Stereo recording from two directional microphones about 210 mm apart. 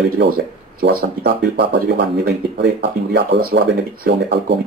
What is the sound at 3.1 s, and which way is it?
Speech, 50° right (ahead or behind).